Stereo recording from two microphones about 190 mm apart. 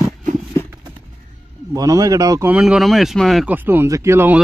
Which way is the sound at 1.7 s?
15° right (ahead or behind).